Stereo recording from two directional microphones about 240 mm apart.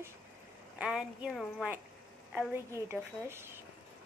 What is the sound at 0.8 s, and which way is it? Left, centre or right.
A woman's voice, centre.